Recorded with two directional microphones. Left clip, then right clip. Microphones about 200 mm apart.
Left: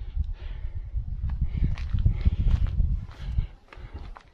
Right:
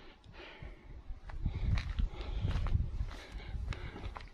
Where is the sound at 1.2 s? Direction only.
5° right (ahead or behind).